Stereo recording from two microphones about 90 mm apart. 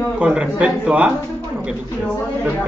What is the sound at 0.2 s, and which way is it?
Speech, 10° right (ahead or behind).